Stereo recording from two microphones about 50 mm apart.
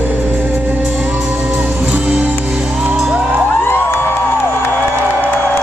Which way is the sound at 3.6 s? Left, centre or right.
Left.